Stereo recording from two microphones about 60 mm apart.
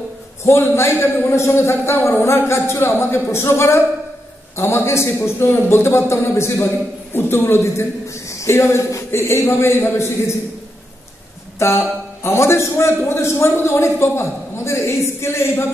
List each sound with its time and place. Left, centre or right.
0.4 s a man's voice: left
7.2 s a man's voice: left
11.6 s a man's voice: left